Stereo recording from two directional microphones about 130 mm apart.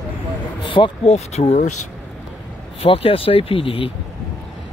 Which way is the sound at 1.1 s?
55° left (ahead or behind).